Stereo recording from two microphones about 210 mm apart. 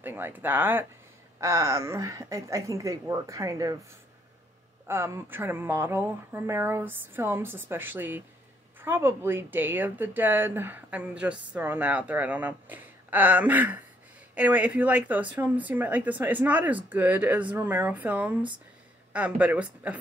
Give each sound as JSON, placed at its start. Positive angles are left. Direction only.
{"t": 0.0, "sound": "speech", "side_deg": -10}
{"t": 4.8, "sound": "speech", "side_deg": -10}